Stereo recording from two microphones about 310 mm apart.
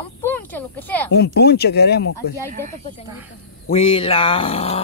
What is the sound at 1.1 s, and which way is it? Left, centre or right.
Speech, left.